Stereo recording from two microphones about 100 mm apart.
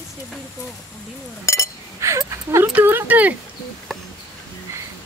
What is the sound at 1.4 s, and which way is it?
Speech, 30° left (ahead or behind).